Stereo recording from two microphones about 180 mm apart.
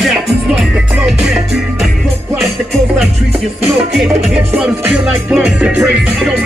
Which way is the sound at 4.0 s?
5° right (ahead or behind).